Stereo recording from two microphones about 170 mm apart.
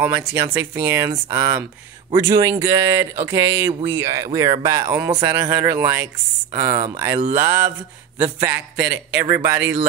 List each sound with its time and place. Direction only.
0.3 s speech: 15° right (ahead or behind)